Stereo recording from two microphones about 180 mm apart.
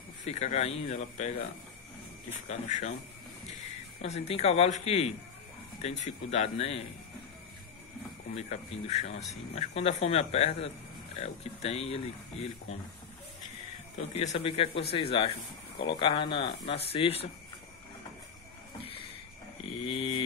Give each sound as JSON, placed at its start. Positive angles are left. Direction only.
{"t": 0.2, "sound": "speech", "side_deg": 40}
{"t": 2.4, "sound": "speech", "side_deg": 40}
{"t": 4.0, "sound": "speech", "side_deg": 35}
{"t": 8.4, "sound": "speech", "side_deg": 40}
{"t": 14.1, "sound": "speech", "side_deg": 35}
{"t": 19.8, "sound": "a sound", "side_deg": 30}